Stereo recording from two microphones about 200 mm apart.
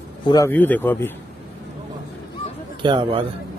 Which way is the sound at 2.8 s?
25° right (ahead or behind).